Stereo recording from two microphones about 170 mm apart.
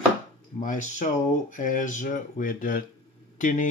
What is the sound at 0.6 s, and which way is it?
Speech, 45° left (ahead or behind).